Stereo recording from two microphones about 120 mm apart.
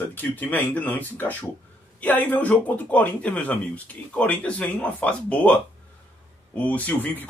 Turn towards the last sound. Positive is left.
turn(degrees=15)  # may be behind; listen again after turning